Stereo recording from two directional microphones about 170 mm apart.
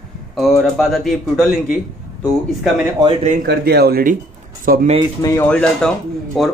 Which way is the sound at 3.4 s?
70° right (ahead or behind).